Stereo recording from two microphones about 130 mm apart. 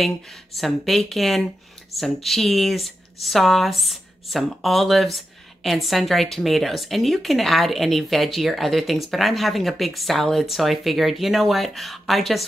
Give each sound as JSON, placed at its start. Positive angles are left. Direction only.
{"t": 0.0, "sound": "speech", "side_deg": 0}